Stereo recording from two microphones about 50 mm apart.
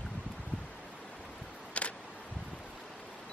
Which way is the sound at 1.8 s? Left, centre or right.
Left.